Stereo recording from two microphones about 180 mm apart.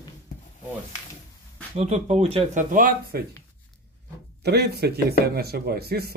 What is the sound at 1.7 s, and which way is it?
Speech, 35° right (ahead or behind).